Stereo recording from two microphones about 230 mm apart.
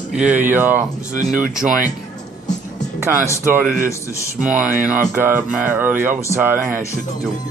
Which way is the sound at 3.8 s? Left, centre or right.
Centre.